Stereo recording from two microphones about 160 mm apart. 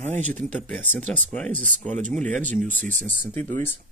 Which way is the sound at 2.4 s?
50° right (ahead or behind).